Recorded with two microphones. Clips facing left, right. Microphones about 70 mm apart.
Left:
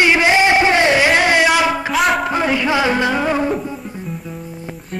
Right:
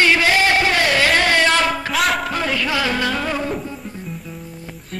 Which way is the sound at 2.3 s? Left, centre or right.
Centre.